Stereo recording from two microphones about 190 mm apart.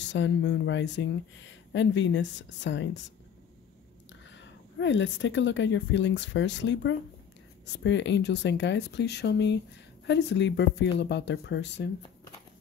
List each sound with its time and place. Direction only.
0.0 s speech: 70° left (ahead or behind)
4.3 s a woman's voice: 70° left (ahead or behind)